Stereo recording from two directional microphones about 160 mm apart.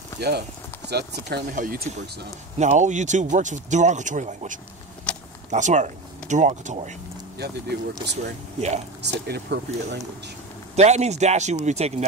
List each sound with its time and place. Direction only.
0.2 s speech: 90° right
1.5 s speech: 55° right (ahead or behind)
5.1 s a sound: 5° left (ahead or behind)
5.5 s speech: 50° right (ahead or behind)
7.3 s speech: 90° right
8.5 s speech: 45° right (ahead or behind)
9.0 s speech: 90° right
10.8 s speech: 45° right (ahead or behind)